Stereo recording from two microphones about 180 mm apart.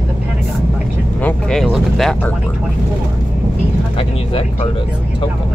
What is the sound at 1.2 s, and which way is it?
Vehicle, 5° left (ahead or behind).